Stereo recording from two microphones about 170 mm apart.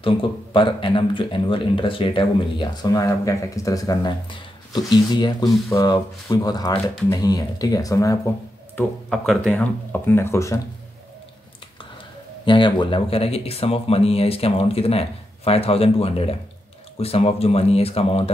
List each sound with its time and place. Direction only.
0.0 s speech: 30° left (ahead or behind)
9.1 s speech: centre (ahead or behind); by 10.6 s 15° left (ahead or behind)
12.4 s speech: 30° left (ahead or behind)